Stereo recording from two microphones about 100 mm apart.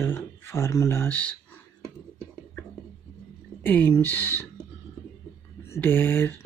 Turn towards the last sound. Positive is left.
turn(degrees=20)  # may be behind; listen again after turning